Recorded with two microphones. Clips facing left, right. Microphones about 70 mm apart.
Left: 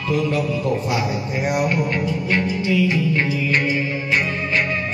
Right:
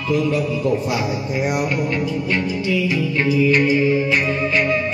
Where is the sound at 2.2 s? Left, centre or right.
Left.